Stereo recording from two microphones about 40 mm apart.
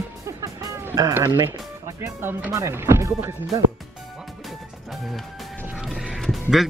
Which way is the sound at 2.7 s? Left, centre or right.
Right.